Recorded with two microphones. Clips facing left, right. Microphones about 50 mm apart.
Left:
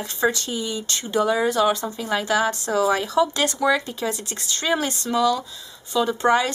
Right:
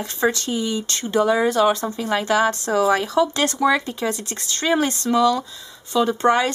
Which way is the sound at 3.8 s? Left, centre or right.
Right.